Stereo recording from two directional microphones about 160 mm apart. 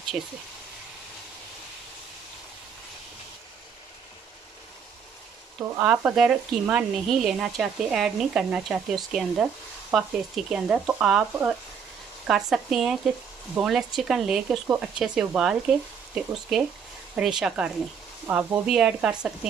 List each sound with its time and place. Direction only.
0.2 s speech: centre (ahead or behind)
5.6 s speech: 10° right (ahead or behind)